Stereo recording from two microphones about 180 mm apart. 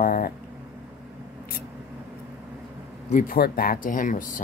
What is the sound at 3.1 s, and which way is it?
Speech, 55° left (ahead or behind).